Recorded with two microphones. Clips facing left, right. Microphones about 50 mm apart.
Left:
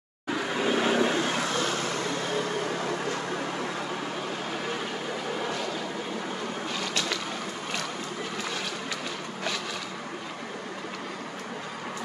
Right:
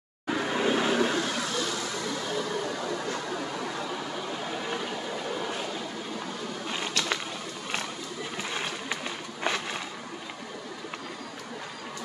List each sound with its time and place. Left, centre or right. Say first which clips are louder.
0.3 s vehicle: even; centre
0.8 s vehicle: left 1 dB; centre
1.2 s vehicle: left 3 dB; left
6.7 s a sound: right 2 dB; right